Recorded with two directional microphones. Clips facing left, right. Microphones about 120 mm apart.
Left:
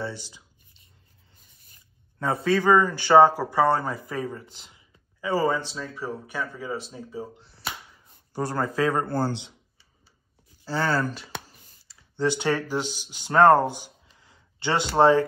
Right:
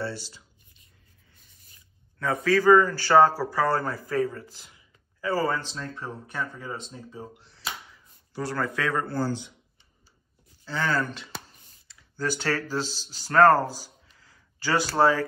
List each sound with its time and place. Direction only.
0.0 s speech: 15° left (ahead or behind)
2.1 s a man's voice: 30° left (ahead or behind); by 7.2 s 10° left (ahead or behind)
8.3 s speech: 50° left (ahead or behind)
8.6 s a man's voice: 35° left (ahead or behind)
9.0 s a man's voice: 55° left (ahead or behind)
10.6 s speech: 35° left (ahead or behind)
12.2 s speech: 20° left (ahead or behind)